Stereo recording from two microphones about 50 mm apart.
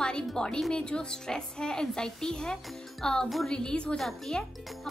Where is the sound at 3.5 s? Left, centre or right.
Centre.